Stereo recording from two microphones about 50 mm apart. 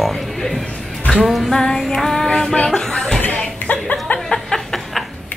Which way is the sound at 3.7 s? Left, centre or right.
Left.